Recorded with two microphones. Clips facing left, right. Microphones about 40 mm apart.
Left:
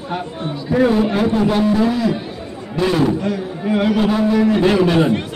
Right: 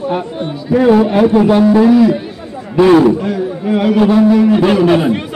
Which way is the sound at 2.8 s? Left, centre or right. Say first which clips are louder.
Right 9 dB; right.